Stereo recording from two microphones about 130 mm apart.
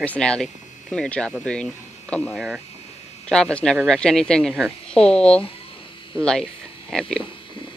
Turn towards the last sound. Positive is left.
turn(degrees=5)  # may be behind; listen again after turning